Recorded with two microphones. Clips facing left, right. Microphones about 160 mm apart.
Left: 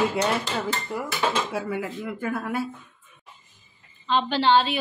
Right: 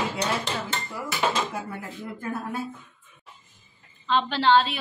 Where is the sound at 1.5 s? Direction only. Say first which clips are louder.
Left 6 dB; 90° left.